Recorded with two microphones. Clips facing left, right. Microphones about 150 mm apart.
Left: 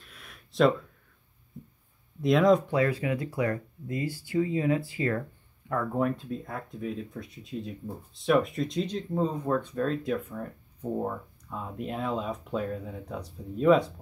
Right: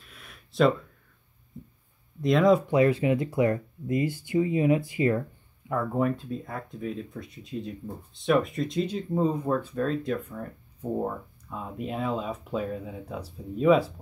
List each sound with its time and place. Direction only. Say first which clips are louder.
0.0 s a sound: right 1 dB; centre (ahead or behind)
2.2 s speech: right 1 dB; centre (ahead or behind)
2.7 s speech: right 5 dB; 20° right (ahead or behind)
5.7 s speech: right 1 dB; 5° right (ahead or behind)